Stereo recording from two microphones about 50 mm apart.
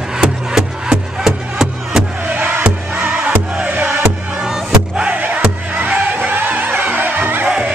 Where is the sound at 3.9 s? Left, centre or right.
Centre.